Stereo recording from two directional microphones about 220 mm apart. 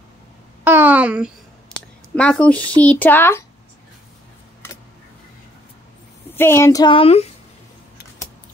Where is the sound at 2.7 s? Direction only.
5° left (ahead or behind).